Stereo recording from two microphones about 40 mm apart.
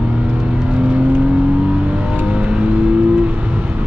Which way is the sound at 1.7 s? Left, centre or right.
Right.